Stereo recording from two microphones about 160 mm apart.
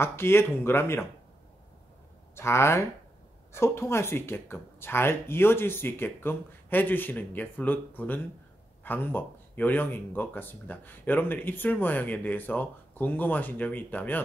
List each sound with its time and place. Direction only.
0.0 s speech: 15° left (ahead or behind)
2.3 s speech: 15° left (ahead or behind)